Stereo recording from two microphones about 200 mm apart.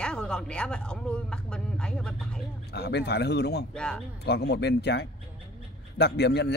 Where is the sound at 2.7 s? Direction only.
55° left (ahead or behind).